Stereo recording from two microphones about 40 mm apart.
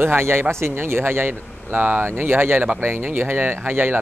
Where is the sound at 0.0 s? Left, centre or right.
Right.